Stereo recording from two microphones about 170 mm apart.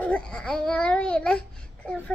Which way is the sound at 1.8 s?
10° left (ahead or behind).